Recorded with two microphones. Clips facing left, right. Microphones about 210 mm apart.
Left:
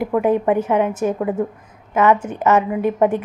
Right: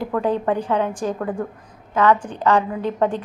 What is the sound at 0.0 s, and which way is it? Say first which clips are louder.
A woman's voice: left 4 dB; 15° left (ahead or behind).